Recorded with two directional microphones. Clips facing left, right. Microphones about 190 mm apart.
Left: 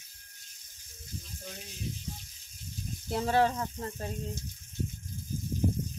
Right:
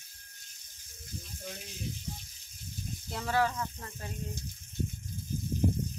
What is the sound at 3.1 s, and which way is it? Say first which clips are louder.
Speech: left 4 dB; 25° left (ahead or behind).